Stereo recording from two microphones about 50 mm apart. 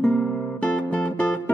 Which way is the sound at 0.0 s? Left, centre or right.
Left.